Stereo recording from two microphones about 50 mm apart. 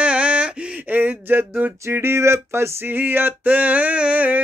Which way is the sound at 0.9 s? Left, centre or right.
Right.